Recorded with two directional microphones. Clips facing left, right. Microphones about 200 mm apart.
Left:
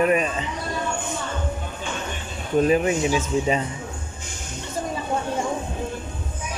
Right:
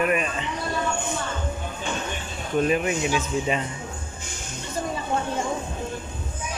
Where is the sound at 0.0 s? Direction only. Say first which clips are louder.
Left 4 dB; 30° left (ahead or behind).